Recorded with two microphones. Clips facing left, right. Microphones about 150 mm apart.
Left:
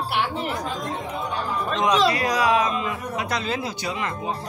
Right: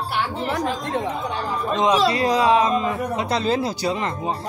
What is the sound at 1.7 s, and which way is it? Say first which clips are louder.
Speech: right 2 dB; 20° right (ahead or behind).